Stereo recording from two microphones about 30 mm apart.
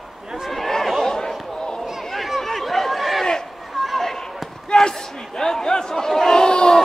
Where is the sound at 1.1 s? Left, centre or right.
Centre.